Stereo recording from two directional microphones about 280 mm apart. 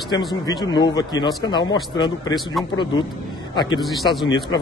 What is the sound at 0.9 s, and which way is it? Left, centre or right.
Speech, centre.